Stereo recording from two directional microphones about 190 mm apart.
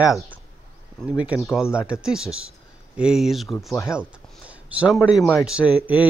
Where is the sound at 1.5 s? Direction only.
5° right (ahead or behind).